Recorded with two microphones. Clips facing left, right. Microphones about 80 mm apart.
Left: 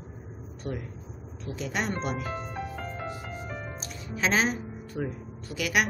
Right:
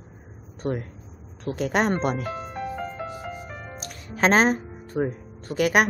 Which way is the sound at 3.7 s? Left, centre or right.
Right.